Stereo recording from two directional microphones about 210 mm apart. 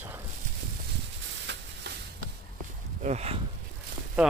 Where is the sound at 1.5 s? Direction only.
60° right (ahead or behind).